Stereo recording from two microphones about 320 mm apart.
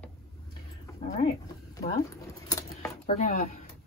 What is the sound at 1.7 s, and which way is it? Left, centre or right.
Pigeon, centre.